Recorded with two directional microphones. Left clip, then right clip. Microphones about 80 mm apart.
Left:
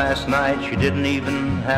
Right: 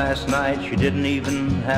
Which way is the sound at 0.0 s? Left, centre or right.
Right.